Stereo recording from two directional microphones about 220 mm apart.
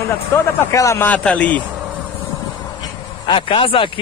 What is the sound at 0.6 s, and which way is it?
Speech, 10° left (ahead or behind).